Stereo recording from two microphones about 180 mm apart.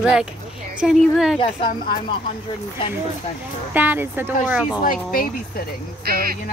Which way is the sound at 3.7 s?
10° right (ahead or behind).